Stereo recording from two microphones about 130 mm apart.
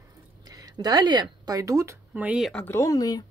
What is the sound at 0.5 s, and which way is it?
Speech, 30° right (ahead or behind).